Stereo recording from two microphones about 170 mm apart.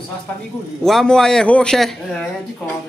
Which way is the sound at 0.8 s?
5° left (ahead or behind).